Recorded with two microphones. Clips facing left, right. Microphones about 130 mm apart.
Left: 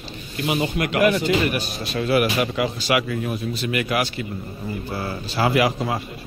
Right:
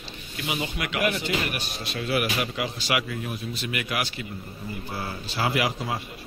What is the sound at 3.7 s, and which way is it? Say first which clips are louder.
Speech: left 7 dB; 40° left (ahead or behind).